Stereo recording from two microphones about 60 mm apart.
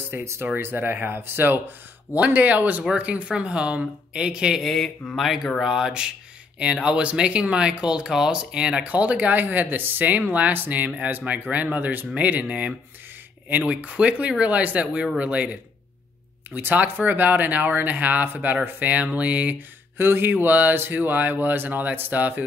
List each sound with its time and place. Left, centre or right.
0.1 s speech: right
2.1 s a woman's voice: right
4.6 s a woman's voice: centre; by 19.5 s right
20.0 s speech: right